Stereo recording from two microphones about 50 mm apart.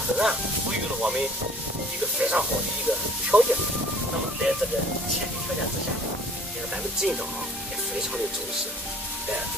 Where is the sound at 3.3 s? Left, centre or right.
Right.